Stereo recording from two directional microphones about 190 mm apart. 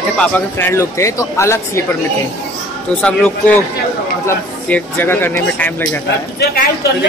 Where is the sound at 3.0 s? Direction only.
5° left (ahead or behind).